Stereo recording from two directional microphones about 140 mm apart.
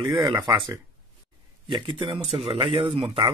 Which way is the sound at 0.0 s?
30° right (ahead or behind).